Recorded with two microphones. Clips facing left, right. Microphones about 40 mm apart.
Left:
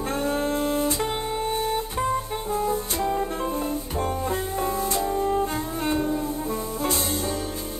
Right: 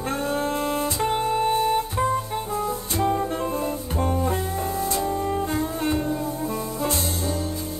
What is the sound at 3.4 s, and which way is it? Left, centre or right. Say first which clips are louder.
Organ: right 1 dB; right.